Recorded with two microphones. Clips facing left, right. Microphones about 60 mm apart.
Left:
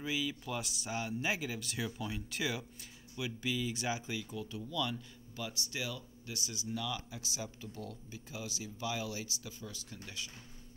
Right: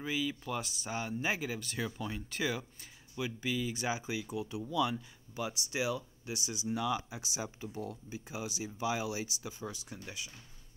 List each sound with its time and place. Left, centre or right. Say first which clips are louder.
0.0 s speech: right 2 dB; centre